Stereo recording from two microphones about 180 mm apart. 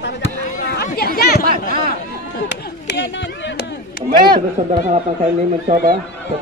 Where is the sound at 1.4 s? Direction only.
55° right (ahead or behind).